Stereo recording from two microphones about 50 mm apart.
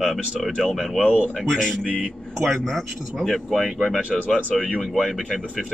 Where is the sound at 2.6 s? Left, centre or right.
Centre.